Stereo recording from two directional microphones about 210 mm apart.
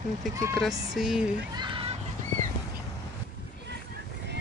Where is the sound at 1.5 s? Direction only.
20° right (ahead or behind).